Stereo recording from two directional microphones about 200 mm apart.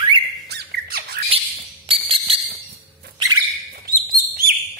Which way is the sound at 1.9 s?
25° right (ahead or behind).